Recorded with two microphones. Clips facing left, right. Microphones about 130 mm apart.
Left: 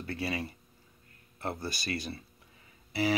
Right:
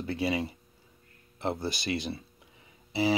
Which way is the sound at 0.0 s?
20° right (ahead or behind).